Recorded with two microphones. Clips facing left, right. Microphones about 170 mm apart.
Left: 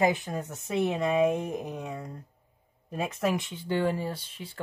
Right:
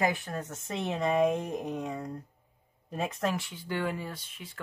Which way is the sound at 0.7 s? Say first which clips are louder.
Left 3 dB; 5° left (ahead or behind).